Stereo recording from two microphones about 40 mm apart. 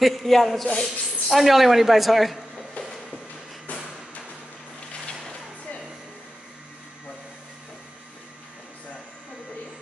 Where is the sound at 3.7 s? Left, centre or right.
Left.